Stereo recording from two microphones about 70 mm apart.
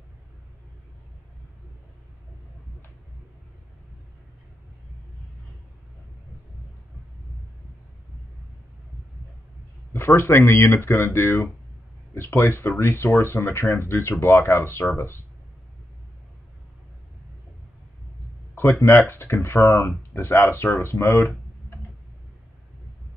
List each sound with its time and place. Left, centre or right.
9.9 s speech: left
18.5 s speech: left